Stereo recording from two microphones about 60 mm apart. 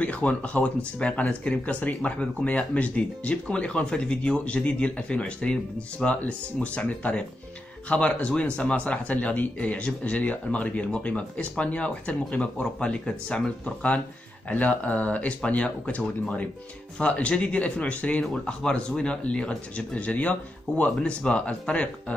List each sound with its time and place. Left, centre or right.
0.0 s speech: left
18.2 s speech: centre